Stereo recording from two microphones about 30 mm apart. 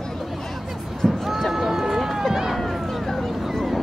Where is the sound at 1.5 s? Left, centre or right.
Centre.